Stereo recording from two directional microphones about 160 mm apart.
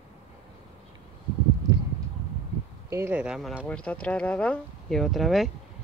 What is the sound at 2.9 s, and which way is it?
Speech, 15° right (ahead or behind).